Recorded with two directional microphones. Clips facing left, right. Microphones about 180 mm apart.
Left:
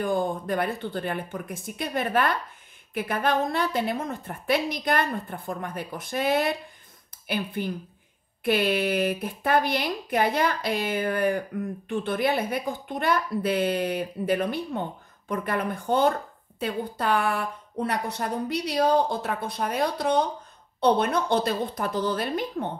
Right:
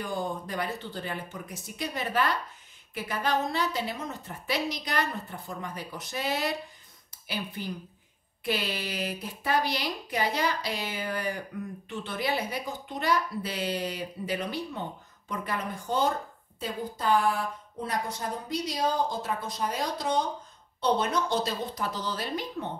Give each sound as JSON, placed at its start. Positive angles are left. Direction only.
{"t": 0.0, "sound": "a woman's voice", "side_deg": 50}